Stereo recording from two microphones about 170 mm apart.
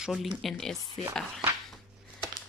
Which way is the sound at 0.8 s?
15° right (ahead or behind).